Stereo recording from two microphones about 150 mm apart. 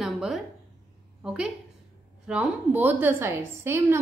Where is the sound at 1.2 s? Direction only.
5° right (ahead or behind).